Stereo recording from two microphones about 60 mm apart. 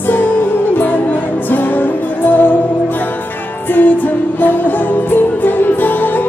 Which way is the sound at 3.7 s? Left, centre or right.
Left.